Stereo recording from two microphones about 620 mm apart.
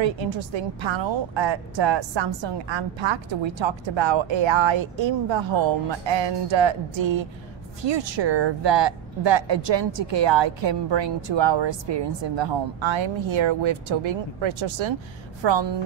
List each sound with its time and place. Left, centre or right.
0.0 s a woman's voice: right